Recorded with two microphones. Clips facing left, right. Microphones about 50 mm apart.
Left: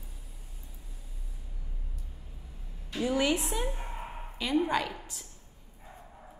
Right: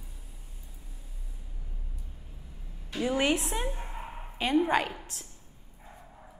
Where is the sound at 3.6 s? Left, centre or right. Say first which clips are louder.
Even; centre.